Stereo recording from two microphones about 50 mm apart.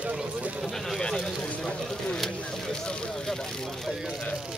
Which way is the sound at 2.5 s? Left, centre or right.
Centre.